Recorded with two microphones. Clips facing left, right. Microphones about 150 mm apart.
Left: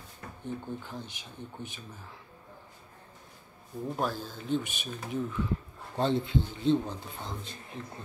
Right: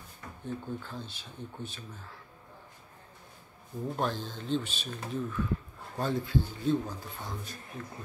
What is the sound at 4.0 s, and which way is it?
A man's voice, 10° left (ahead or behind).